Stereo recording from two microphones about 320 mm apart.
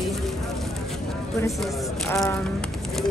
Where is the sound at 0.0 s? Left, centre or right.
Centre.